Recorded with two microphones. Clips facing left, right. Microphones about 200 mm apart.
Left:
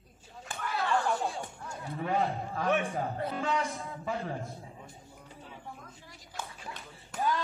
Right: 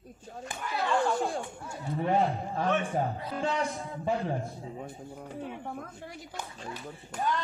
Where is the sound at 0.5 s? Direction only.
15° right (ahead or behind).